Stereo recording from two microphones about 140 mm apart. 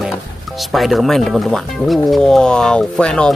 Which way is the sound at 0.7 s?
Centre (ahead or behind).